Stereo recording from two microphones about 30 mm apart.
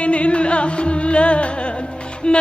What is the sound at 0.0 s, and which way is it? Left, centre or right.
Music, left.